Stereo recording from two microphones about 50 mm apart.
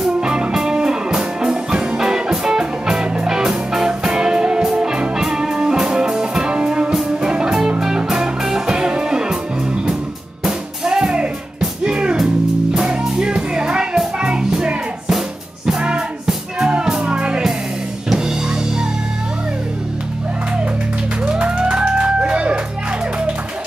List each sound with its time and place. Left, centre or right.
0.2 s music: centre
10.4 s music: centre
13.2 s music: centre
21.3 s music: centre